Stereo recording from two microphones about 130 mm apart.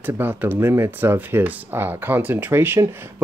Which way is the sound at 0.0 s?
15° right (ahead or behind).